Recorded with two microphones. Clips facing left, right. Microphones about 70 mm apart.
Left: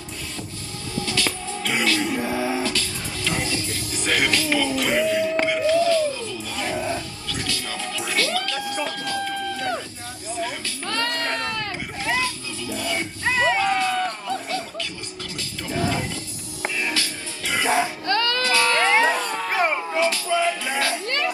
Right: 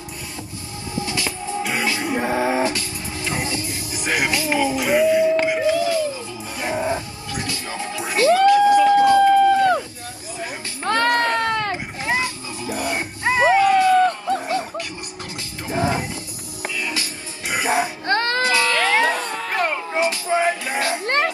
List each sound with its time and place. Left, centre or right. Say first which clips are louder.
0.9 s music: even; right
8.8 s emergency vehicle: right 15 dB; right
10.8 s music: right 9 dB; right
16.6 s music: left 1 dB; left
16.9 s music: left 1 dB; right
18.1 s baby cry: right 3 dB; right
18.7 s a sound: even; left
19.5 s a sound: even; centre
19.9 s a sound: right 1 dB; right